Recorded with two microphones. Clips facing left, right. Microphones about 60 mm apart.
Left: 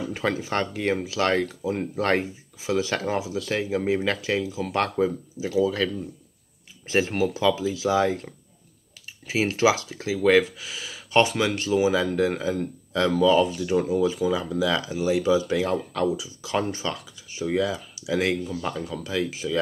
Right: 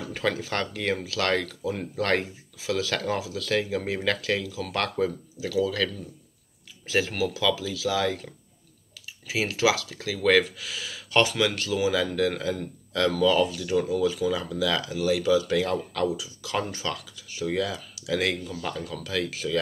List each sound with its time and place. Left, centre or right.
0.0 s speech: left
9.3 s speech: left